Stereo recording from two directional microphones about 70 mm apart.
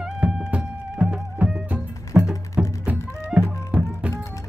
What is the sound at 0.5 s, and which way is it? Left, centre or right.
Music, centre.